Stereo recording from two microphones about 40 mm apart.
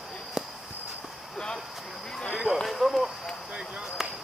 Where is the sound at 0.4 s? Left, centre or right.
Centre.